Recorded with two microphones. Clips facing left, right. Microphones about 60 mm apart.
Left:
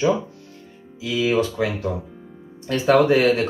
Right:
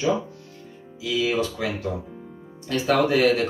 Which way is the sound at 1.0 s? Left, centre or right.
Left.